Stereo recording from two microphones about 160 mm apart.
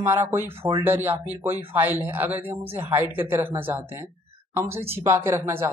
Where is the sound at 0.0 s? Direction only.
15° right (ahead or behind).